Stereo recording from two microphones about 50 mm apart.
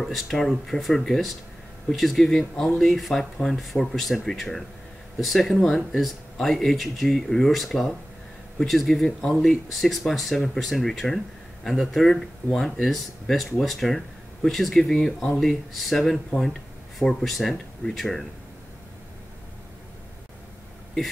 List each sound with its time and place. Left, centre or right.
0.0 s speech: centre